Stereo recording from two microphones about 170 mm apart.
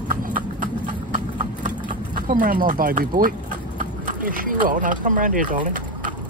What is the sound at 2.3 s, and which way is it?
Speech, 60° right (ahead or behind).